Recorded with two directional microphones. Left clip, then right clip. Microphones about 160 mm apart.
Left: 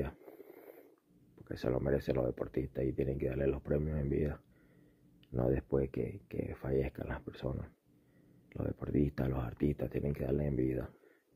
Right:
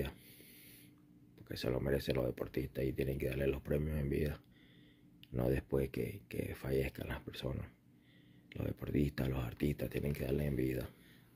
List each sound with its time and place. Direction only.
1.7 s speech: 20° left (ahead or behind)
2.0 s speech: 30° left (ahead or behind)
2.2 s speech: 20° left (ahead or behind)
8.5 s speech: 20° left (ahead or behind)